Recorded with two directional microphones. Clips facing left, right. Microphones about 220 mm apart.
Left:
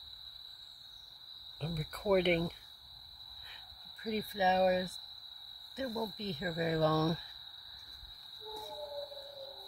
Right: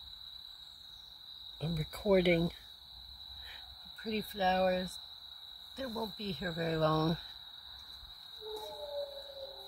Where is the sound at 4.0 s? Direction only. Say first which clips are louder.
Left 1 dB; 15° left (ahead or behind).